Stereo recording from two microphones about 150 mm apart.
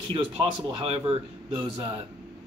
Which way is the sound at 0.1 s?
35° right (ahead or behind).